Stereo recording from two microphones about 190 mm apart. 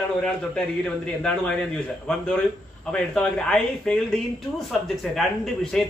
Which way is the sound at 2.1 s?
5° left (ahead or behind).